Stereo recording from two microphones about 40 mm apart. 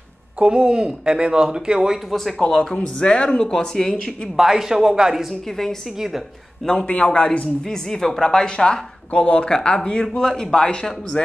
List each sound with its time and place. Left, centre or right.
0.4 s speech: right
2.0 s a woman's voice: centre
2.4 s speech: centre
4.4 s a man's voice: centre
5.2 s a woman's voice: centre
5.9 s a man's voice: centre
6.9 s speech: left
7.6 s speech: centre
9.1 s speech: left; by 11.2 s centre